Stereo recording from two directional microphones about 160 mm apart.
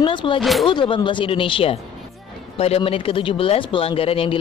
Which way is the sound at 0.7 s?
30° left (ahead or behind).